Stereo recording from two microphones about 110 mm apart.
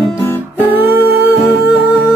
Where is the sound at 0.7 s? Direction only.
15° right (ahead or behind).